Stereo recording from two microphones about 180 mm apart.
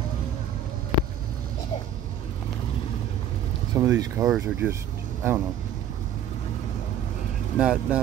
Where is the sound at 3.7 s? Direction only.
20° right (ahead or behind).